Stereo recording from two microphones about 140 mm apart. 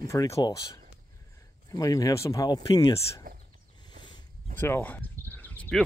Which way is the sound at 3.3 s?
90° right.